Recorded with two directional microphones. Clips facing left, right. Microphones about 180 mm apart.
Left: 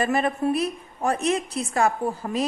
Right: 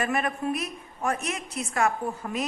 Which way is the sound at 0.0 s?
30° left (ahead or behind).